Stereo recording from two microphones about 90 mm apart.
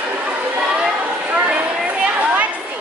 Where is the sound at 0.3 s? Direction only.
15° right (ahead or behind).